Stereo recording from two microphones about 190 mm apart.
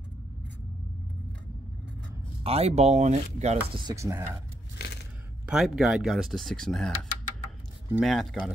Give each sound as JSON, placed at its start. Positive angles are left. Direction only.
{"t": 2.4, "sound": "speech", "side_deg": -35}
{"t": 3.8, "sound": "speech", "side_deg": -15}
{"t": 5.5, "sound": "speech", "side_deg": -5}
{"t": 7.9, "sound": "speech", "side_deg": 0}